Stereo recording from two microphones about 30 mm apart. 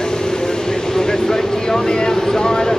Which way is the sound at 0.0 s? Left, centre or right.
Left.